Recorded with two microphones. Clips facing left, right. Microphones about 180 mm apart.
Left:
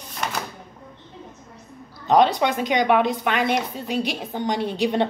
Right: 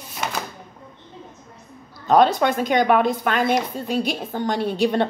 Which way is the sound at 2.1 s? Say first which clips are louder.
Right 1 dB; 50° right (ahead or behind).